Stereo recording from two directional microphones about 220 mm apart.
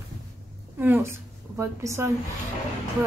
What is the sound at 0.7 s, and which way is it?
A woman's voice, 10° right (ahead or behind).